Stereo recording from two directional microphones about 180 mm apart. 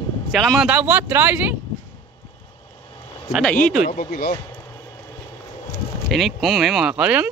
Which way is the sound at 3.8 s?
45° left (ahead or behind).